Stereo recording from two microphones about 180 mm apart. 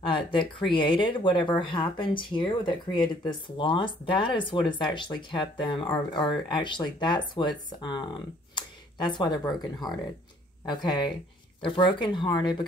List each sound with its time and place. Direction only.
0.0 s speech: 25° left (ahead or behind)